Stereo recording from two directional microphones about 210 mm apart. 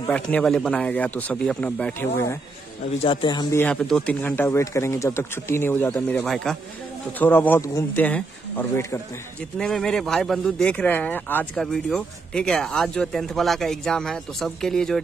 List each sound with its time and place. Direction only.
0.1 s speech: 5° left (ahead or behind)
3.0 s speech: 25° left (ahead or behind)
3.5 s speech: 5° left (ahead or behind)